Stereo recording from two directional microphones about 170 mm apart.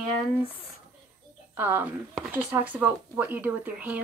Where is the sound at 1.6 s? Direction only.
10° right (ahead or behind).